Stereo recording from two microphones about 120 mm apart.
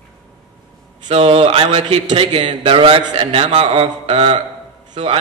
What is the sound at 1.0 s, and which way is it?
A man's voice, 55° right (ahead or behind).